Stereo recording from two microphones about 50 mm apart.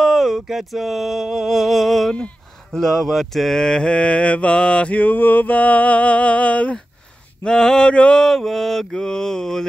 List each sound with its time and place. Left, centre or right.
0.0 s a sound: centre
2.7 s mantra: centre
4.9 s mantra: left
7.4 s mantra: centre
8.2 s mantra: centre